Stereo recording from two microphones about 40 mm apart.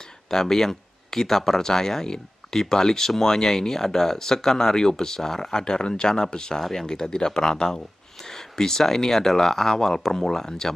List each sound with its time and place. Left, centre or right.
0.0 s speech: centre